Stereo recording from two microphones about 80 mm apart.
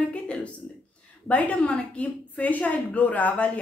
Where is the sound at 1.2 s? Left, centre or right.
Centre.